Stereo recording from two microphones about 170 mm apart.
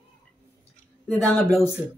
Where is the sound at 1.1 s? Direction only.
15° left (ahead or behind).